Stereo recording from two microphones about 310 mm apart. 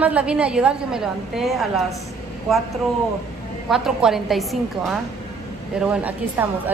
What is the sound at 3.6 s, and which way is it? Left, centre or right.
A woman's voice, centre.